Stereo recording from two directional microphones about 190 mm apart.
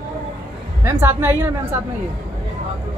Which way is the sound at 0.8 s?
10° right (ahead or behind).